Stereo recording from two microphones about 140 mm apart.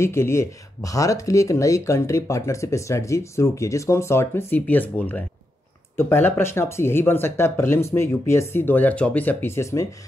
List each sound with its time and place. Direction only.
0.0 s speech: 20° left (ahead or behind)